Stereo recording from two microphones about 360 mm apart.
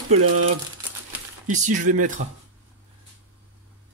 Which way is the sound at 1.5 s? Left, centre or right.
Right.